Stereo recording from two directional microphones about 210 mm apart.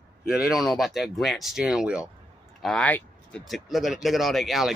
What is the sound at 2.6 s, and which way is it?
Speech, 5° left (ahead or behind).